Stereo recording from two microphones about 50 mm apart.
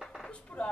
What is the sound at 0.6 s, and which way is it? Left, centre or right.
Speech, left.